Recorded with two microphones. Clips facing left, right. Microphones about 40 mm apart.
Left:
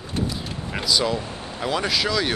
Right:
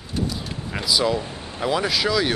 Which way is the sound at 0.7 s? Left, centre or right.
Centre.